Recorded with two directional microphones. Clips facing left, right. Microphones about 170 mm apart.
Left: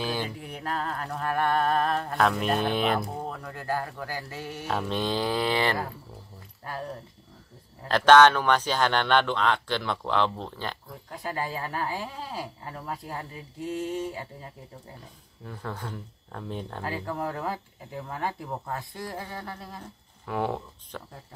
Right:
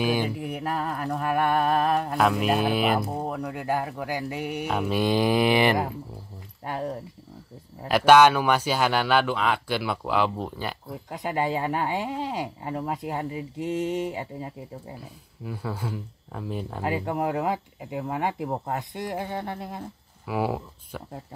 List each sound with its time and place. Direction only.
0.0 s speech: 15° right (ahead or behind)
3.3 s speech: 15° right (ahead or behind)
7.9 s speech: 10° right (ahead or behind)
15.0 s speech: 10° right (ahead or behind)
16.8 s speech: 20° right (ahead or behind)
20.2 s speech: 5° right (ahead or behind)